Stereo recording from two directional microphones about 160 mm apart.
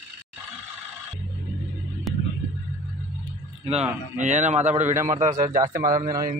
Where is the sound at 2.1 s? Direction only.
Centre (ahead or behind).